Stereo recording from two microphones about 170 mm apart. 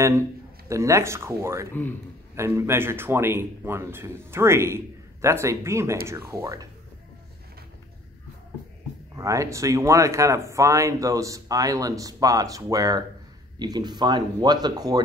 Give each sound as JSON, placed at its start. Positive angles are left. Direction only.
{"t": 0.7, "sound": "a man's voice", "side_deg": -15}
{"t": 9.1, "sound": "speech", "side_deg": -20}